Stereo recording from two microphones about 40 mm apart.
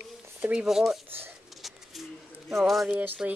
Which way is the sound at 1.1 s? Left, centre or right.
Right.